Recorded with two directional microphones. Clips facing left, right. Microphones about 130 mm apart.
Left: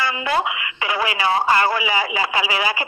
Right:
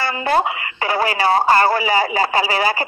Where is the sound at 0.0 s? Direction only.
40° right (ahead or behind).